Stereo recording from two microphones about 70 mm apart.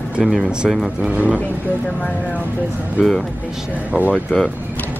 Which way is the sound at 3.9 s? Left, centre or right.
Right.